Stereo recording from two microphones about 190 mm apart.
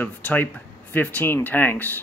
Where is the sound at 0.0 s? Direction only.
10° left (ahead or behind).